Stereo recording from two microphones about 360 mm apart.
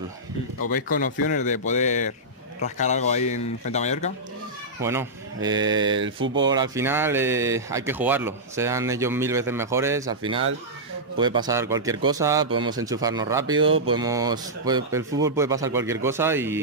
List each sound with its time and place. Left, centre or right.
0.7 s a man's voice: left
4.8 s speech: centre
5.9 s speech: right
6.4 s speech: centre